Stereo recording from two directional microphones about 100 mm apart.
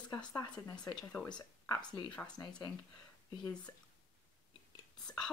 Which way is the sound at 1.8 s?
45° left (ahead or behind).